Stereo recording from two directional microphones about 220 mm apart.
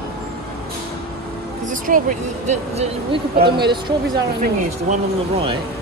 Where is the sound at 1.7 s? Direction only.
35° right (ahead or behind).